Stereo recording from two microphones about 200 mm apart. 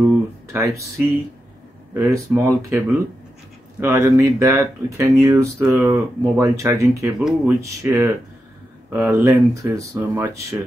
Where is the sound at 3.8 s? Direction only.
15° right (ahead or behind).